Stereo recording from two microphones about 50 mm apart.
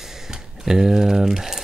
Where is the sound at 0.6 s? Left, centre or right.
Centre.